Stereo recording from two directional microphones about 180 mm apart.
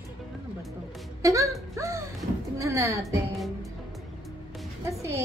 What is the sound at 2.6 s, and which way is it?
Speech, 15° right (ahead or behind).